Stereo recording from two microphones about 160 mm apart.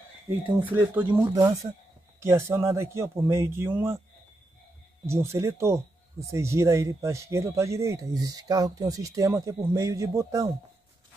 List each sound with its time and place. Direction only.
0.7 s speech: 10° right (ahead or behind)
1.3 s speech: 25° right (ahead or behind)
5.0 s speech: 15° right (ahead or behind)